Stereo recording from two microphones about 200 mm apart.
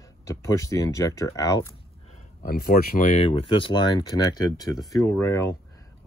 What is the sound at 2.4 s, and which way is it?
Speech, 50° left (ahead or behind).